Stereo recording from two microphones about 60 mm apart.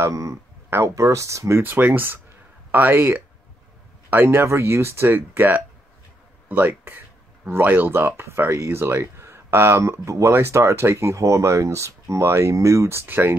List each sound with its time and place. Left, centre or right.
0.1 s speech: right
1.6 s speech: right
13.0 s speech: right